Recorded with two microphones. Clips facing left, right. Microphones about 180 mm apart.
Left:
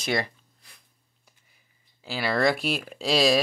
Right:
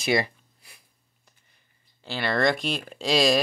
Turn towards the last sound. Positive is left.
turn(degrees=0)  # may be behind; listen again after turning